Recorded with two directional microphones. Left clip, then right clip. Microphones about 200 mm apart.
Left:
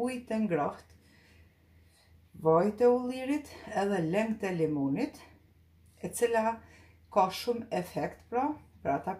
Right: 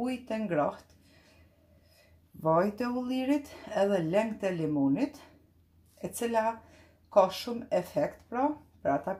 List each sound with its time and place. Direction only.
0.0 s speech: 20° right (ahead or behind)
2.4 s speech: 25° right (ahead or behind)